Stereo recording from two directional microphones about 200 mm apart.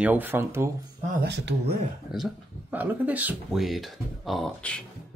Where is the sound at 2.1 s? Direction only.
5° right (ahead or behind).